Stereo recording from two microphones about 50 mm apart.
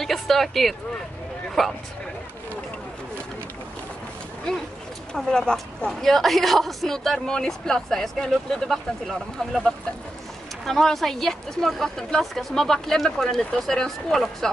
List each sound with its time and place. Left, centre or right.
0.0 s a sound: centre
1.6 s speech: centre
5.1 s speech: centre
5.9 s speech: centre
10.6 s speech: centre